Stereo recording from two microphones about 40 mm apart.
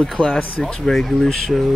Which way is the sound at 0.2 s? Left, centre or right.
Right.